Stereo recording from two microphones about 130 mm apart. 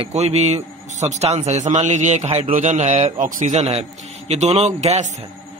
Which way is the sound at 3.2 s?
90° right.